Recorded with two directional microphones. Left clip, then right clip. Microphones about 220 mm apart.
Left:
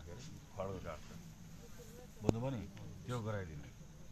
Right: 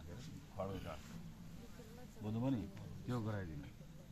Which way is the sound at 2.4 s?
15° left (ahead or behind).